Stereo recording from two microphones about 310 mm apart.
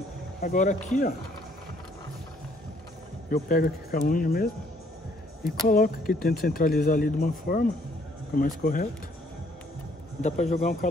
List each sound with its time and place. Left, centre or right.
0.4 s speech: left
3.3 s speech: left
5.7 s speech: left
10.2 s speech: left